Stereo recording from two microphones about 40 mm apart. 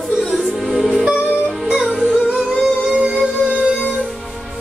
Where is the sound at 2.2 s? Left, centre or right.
Right.